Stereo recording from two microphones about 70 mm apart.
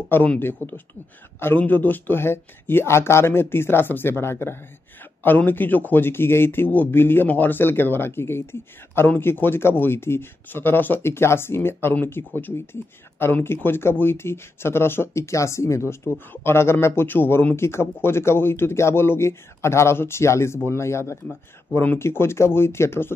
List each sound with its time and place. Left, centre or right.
0.1 s speech: left